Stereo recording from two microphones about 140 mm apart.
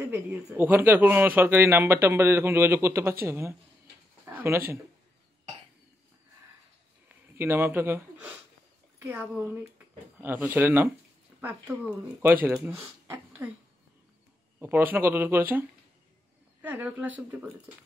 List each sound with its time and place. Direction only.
0.0 s speech: 15° right (ahead or behind)
7.3 s speech: 15° right (ahead or behind)
14.6 s speech: 15° right (ahead or behind)
16.6 s speech: 10° right (ahead or behind)